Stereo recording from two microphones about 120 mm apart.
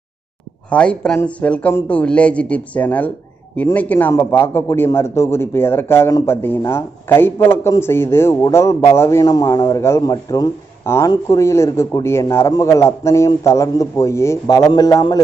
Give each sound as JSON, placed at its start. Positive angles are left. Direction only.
{"t": 0.7, "sound": "a man's voice", "side_deg": 10}